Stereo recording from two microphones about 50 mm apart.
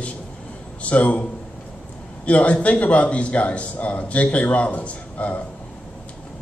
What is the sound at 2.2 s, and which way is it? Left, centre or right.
A man's voice, left.